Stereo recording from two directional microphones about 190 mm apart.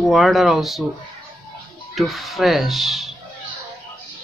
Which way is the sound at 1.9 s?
Centre (ahead or behind).